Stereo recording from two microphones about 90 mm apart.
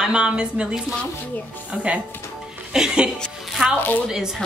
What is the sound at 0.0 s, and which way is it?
Speech, 10° right (ahead or behind).